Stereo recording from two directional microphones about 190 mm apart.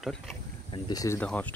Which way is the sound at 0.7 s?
20° left (ahead or behind).